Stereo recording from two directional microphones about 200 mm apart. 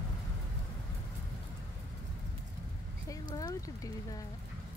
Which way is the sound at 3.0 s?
15° left (ahead or behind).